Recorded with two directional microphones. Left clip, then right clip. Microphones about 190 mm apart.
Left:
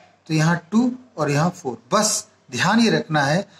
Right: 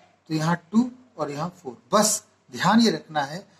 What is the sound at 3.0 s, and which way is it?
Speech, 20° left (ahead or behind).